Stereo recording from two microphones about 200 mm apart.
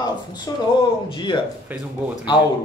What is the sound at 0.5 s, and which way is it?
Speech, 20° left (ahead or behind).